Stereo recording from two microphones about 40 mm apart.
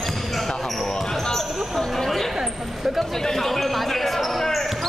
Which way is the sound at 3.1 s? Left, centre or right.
Centre.